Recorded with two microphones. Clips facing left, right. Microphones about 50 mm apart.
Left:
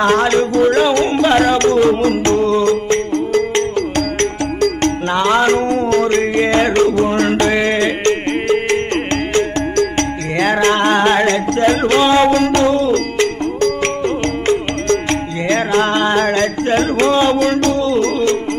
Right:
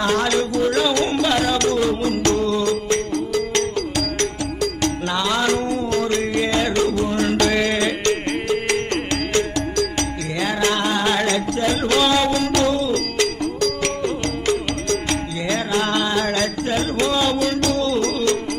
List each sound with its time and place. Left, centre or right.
0.0 s music: left